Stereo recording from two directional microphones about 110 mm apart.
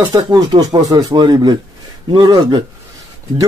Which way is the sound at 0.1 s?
35° right (ahead or behind).